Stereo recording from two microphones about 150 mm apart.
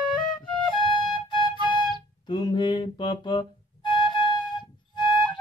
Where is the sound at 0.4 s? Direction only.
10° left (ahead or behind).